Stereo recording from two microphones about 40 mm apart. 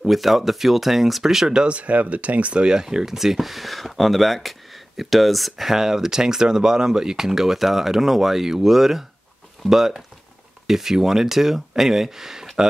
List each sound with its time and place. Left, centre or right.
0.0 s speech: centre
1.6 s speech: right; by 3.2 s centre
3.2 s speech: centre